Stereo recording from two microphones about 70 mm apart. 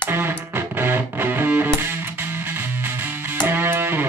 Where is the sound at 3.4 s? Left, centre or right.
Right.